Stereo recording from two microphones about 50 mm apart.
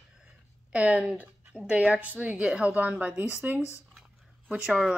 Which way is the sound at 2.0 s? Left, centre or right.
Right.